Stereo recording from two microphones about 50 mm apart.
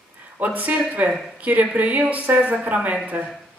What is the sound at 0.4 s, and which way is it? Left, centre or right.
A woman's voice, right.